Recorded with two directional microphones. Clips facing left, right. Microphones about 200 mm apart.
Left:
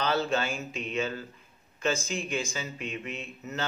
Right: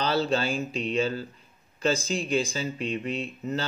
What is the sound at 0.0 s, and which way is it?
Speech, 35° right (ahead or behind).